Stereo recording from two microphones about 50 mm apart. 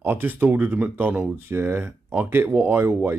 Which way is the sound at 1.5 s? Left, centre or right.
Right.